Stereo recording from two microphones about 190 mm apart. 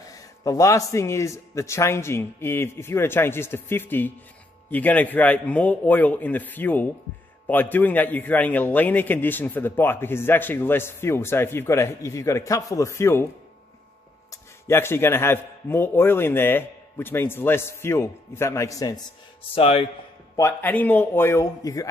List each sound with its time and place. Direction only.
0.0 s a man's voice: 20° left (ahead or behind)
14.3 s a man's voice: 15° left (ahead or behind)
19.5 s speech: 30° left (ahead or behind)
20.3 s a man's voice: 10° left (ahead or behind)